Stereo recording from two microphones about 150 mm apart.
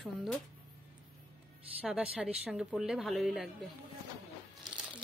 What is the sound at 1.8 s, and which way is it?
A woman's voice, 5° right (ahead or behind).